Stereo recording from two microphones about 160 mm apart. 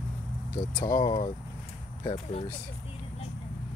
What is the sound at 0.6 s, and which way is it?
Speech, 25° left (ahead or behind).